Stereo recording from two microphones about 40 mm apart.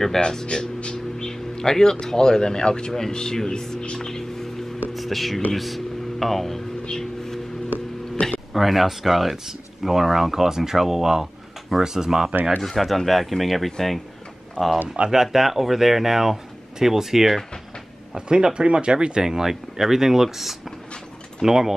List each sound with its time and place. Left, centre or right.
0.2 s speech: centre
3.8 s a sound: centre
4.9 s speech: centre
6.8 s vehicle: centre
8.2 s a sound: left
8.5 s speech: centre
12.6 s speech: centre
14.6 s speech: centre
15.0 s speech: right
15.3 s speech: centre
18.1 s speech: right